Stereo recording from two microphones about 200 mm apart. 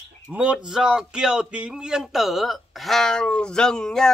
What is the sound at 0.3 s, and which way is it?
A man's voice, 5° right (ahead or behind).